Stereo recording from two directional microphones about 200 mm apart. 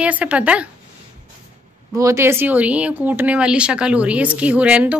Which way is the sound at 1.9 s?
15° right (ahead or behind).